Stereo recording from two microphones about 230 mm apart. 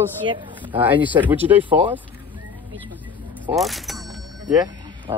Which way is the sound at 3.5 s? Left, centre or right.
Centre.